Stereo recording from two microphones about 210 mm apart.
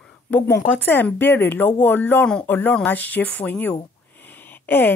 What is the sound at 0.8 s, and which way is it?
Speech, 10° left (ahead or behind).